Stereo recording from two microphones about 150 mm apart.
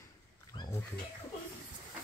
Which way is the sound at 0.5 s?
35° left (ahead or behind).